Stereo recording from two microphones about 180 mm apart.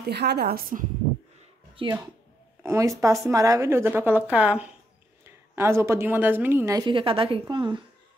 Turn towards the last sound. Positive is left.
turn(degrees=-25)  # may be behind; listen again after turning